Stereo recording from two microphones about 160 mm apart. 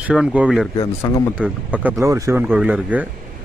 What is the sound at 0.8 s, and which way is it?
Speech, 20° left (ahead or behind).